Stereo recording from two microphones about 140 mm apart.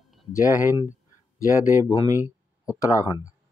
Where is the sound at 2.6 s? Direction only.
30° left (ahead or behind).